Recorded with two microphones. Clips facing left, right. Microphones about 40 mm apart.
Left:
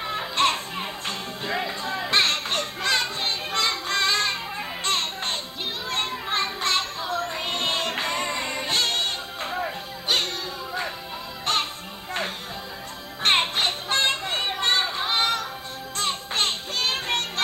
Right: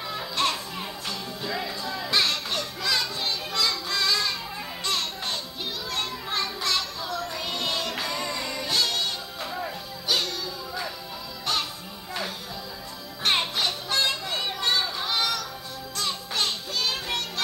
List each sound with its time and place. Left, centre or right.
0.0 s music: left
1.9 s children playing: left
4.8 s music: left
13.2 s music: left